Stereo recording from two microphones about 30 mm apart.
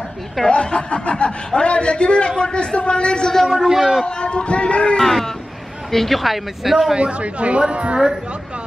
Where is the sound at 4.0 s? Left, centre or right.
Left.